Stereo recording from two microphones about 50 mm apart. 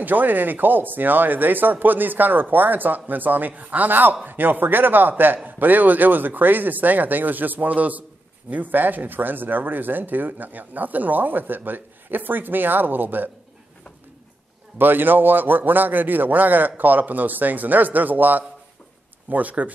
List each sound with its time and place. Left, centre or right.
0.0 s speech: right
14.8 s speech: right